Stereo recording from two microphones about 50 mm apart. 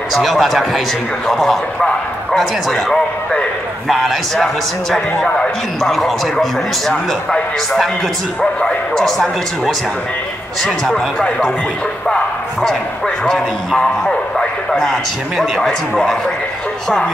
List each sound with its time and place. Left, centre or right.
0.2 s a man's voice: centre
11.1 s speech: centre
13.2 s a man's voice: centre